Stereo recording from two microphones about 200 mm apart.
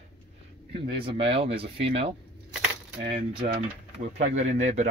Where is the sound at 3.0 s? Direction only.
50° right (ahead or behind).